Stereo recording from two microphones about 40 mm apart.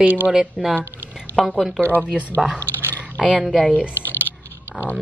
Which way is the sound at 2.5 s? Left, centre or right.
Left.